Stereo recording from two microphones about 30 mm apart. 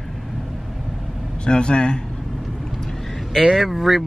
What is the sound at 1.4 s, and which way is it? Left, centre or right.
Speech, left.